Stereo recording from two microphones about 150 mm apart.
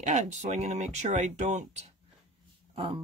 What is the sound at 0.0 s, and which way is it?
Speech, 55° right (ahead or behind).